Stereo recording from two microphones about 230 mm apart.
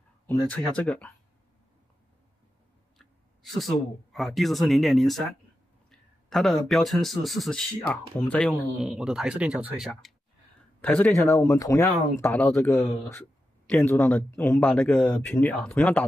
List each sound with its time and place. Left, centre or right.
0.3 s speech: centre
3.0 s speech: centre